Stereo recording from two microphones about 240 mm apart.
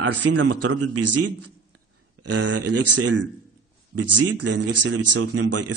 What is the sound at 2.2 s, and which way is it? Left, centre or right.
Speech, right.